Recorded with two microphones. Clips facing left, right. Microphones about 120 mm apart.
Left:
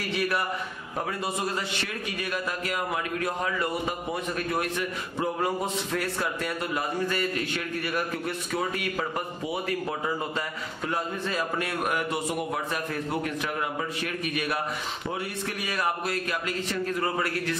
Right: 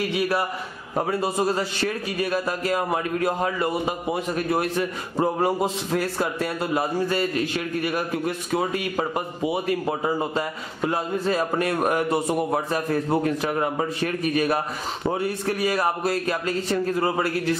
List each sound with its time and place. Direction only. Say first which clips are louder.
0.9 s a man's voice: right 7 dB; 35° right (ahead or behind)